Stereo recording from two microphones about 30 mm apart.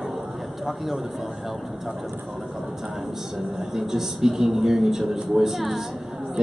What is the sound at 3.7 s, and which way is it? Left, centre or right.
A man's voice, centre.